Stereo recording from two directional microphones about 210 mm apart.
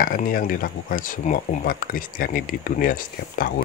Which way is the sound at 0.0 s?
40° left (ahead or behind).